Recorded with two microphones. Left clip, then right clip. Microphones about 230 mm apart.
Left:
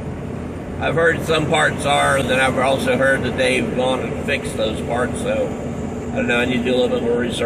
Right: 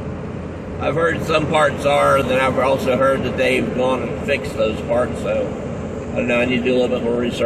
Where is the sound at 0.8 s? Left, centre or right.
Centre.